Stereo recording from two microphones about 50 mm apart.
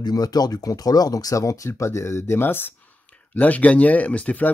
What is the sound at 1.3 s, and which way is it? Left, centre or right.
Speech, left.